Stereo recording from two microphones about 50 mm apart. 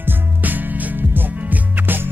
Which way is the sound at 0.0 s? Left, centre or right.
Right.